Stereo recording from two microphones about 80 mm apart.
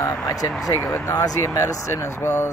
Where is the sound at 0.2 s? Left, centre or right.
Left.